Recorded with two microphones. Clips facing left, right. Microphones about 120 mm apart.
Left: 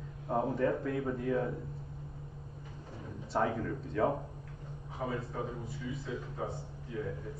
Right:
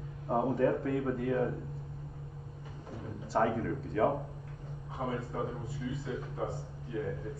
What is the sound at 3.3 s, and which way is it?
Speech, centre (ahead or behind).